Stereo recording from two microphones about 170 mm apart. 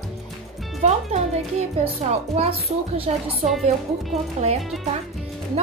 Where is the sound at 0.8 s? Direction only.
40° right (ahead or behind).